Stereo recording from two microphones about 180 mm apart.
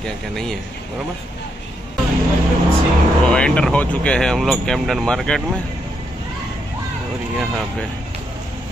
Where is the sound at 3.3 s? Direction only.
5° left (ahead or behind).